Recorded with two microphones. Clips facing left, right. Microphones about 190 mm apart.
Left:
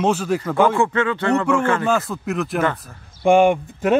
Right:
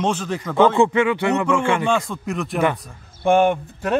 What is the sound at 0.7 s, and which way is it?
Speech, 15° right (ahead or behind).